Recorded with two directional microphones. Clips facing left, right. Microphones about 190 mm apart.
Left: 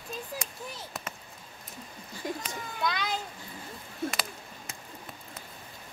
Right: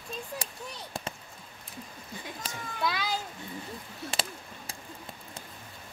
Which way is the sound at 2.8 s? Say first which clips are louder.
Even; 5° right (ahead or behind).